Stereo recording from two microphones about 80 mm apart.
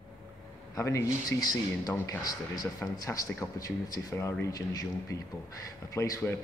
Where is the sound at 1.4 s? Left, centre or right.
Left.